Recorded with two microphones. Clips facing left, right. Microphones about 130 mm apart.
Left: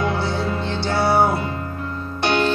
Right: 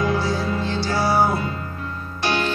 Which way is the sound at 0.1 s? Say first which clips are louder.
Right 1 dB; 25° left (ahead or behind).